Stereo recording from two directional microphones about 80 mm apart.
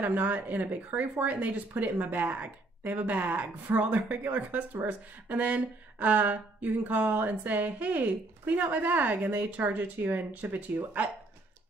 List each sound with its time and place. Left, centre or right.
0.0 s speech: right